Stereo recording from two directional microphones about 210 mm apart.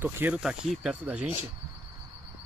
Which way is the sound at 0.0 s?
10° right (ahead or behind).